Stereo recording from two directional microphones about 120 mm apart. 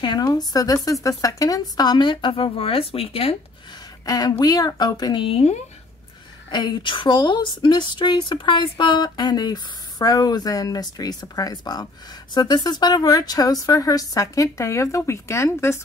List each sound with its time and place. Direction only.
0.0 s speech: 35° left (ahead or behind); by 3.3 s 55° left (ahead or behind)
4.0 s speech: 35° left (ahead or behind); by 5.6 s 60° left (ahead or behind)
6.5 s speech: 40° left (ahead or behind); by 15.8 s 20° left (ahead or behind)